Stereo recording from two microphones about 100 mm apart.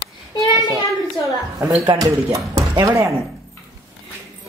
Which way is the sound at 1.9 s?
40° right (ahead or behind).